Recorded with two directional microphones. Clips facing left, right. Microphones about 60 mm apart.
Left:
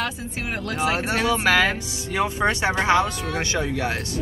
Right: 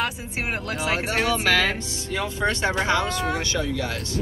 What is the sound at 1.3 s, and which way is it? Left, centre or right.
Speech, left.